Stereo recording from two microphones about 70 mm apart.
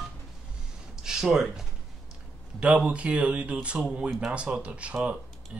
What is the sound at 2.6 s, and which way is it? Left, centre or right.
Speech, centre.